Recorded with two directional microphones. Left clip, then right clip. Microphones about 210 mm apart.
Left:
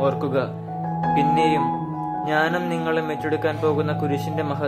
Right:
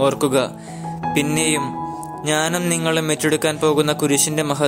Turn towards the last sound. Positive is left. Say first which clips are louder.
# right 6 dB
turn(degrees=-35)  # may be behind; listen again after turning